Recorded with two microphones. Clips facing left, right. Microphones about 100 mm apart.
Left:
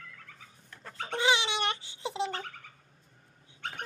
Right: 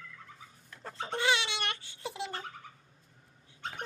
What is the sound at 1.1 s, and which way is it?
Baby cry, 15° left (ahead or behind).